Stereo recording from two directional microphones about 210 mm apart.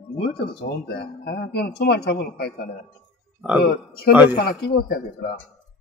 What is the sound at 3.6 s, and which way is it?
Speech, 50° left (ahead or behind).